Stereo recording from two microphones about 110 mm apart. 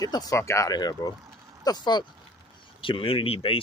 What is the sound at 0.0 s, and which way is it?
Speech, 35° left (ahead or behind).